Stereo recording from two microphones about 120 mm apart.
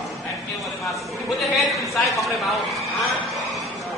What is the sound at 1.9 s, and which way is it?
Speech, centre (ahead or behind).